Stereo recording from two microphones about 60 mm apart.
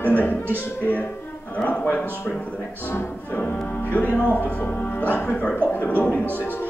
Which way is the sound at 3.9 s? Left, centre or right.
Left.